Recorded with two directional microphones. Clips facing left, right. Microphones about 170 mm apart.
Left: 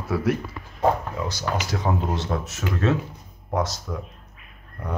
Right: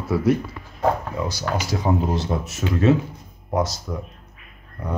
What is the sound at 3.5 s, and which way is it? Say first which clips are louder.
Speech: right 2 dB; 5° right (ahead or behind).